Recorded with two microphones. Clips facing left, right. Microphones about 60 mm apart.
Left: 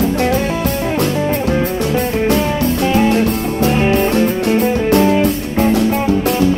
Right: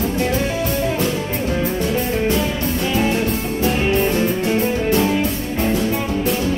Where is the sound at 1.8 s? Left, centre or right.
Left.